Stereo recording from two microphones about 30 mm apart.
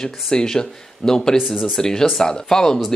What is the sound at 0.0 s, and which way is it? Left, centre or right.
Speech, left.